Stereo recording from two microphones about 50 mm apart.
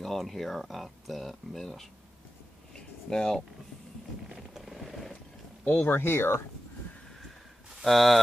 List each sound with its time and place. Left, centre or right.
0.0 s speech: centre
3.1 s speech: centre
4.3 s vehicle: centre
5.7 s speech: left
7.8 s speech: centre